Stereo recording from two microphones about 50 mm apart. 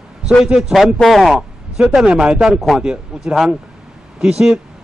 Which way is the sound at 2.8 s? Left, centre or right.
Centre.